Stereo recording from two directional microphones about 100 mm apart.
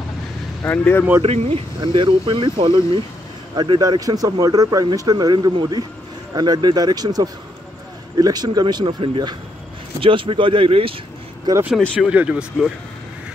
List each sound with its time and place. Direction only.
0.7 s speech: 20° left (ahead or behind)
1.2 s speech: 75° right (ahead or behind)
1.8 s speech: 55° right (ahead or behind)
11.5 s speech: 45° right (ahead or behind)
12.1 s speech: 10° right (ahead or behind)